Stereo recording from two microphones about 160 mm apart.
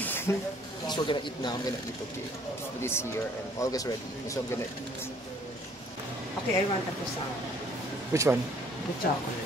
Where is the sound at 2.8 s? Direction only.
15° left (ahead or behind).